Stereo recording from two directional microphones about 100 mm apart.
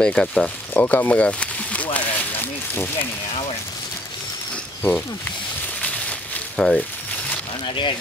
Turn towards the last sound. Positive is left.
turn(degrees=55)  # may be behind; listen again after turning